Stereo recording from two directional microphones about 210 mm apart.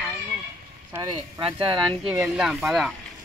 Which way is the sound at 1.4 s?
25° right (ahead or behind).